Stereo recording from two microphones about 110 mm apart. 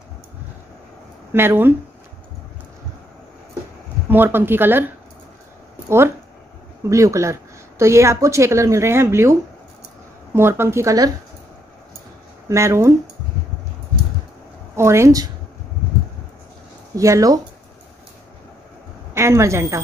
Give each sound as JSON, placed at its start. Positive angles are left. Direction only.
{"t": 1.3, "sound": "speech", "side_deg": -20}
{"t": 4.1, "sound": "speech", "side_deg": -20}
{"t": 12.4, "sound": "speech", "side_deg": -25}
{"t": 14.8, "sound": "speech", "side_deg": -25}
{"t": 16.9, "sound": "speech", "side_deg": -30}
{"t": 19.1, "sound": "speech", "side_deg": -25}